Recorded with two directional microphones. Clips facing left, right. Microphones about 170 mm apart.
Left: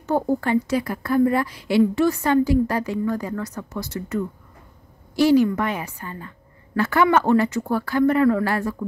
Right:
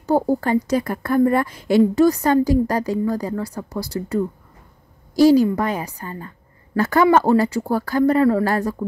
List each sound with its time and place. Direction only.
0.0 s a woman's voice: 35° right (ahead or behind)